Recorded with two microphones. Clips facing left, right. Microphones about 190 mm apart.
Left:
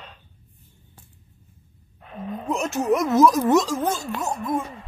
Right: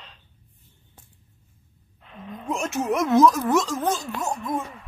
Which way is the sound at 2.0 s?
45° left (ahead or behind).